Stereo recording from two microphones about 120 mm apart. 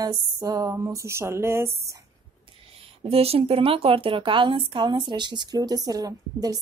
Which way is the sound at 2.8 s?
55° right (ahead or behind).